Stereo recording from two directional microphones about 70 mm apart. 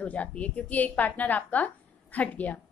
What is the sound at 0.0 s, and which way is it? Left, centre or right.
A woman's voice, centre.